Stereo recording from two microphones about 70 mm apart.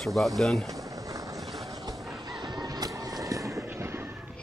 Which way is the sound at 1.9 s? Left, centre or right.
Centre.